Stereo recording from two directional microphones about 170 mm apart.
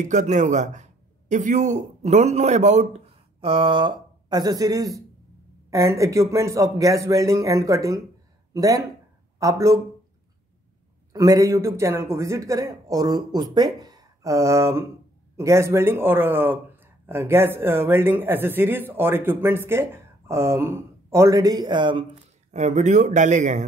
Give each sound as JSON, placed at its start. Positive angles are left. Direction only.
{"t": 0.0, "sound": "a man's voice", "side_deg": -45}
{"t": 11.1, "sound": "a man's voice", "side_deg": -20}
{"t": 13.7, "sound": "a sound", "side_deg": -20}
{"t": 15.3, "sound": "speech", "side_deg": -15}
{"t": 22.5, "sound": "speech", "side_deg": -45}